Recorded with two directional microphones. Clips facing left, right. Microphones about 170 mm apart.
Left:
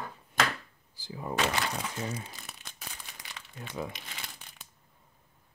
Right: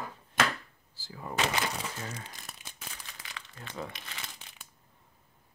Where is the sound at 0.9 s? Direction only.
20° left (ahead or behind).